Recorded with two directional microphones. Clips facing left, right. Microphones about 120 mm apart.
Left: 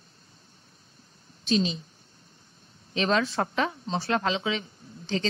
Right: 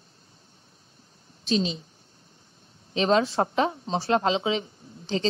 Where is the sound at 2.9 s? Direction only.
30° right (ahead or behind).